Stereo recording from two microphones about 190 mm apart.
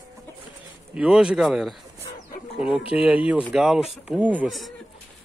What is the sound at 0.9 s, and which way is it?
Speech, 5° right (ahead or behind).